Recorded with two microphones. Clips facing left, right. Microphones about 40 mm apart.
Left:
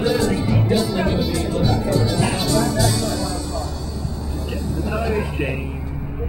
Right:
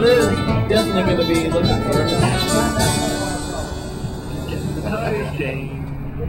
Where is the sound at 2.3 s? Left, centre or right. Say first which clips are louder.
Right 1 dB; right.